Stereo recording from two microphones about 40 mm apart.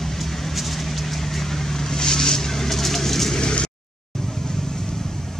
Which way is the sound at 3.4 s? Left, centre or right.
Left.